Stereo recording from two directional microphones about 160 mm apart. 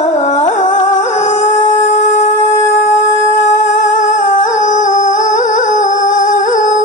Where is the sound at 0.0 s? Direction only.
45° left (ahead or behind).